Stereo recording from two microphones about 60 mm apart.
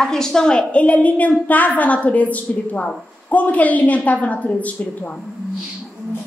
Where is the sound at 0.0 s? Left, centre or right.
Centre.